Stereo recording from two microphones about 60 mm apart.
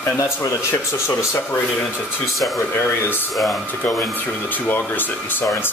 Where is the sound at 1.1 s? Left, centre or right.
Left.